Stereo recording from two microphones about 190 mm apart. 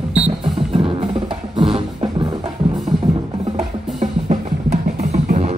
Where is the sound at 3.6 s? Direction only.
35° right (ahead or behind).